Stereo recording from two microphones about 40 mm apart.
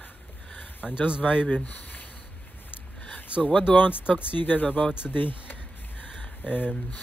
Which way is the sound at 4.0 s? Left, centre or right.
Left.